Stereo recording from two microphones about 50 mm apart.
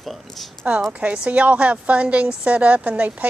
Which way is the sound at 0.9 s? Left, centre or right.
Right.